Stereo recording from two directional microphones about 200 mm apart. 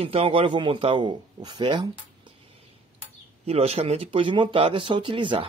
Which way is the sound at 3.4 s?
30° right (ahead or behind).